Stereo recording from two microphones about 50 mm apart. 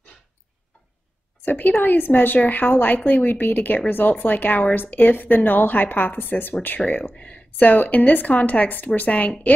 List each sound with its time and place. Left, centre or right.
1.4 s speech: left
6.9 s speech: left